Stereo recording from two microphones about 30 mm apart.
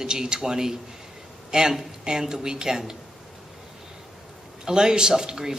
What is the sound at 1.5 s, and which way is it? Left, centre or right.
Speech, right.